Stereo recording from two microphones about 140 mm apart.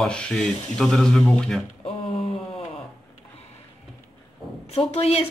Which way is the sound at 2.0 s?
45° left (ahead or behind).